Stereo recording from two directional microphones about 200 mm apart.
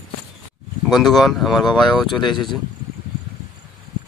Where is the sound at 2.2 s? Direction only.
25° left (ahead or behind).